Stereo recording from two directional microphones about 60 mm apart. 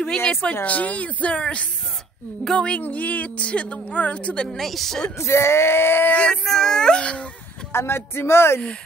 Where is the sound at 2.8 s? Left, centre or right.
Left.